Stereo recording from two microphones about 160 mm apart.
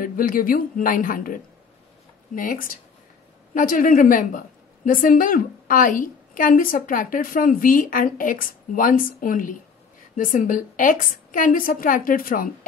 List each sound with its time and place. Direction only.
0.0 s a woman's voice: 60° left (ahead or behind)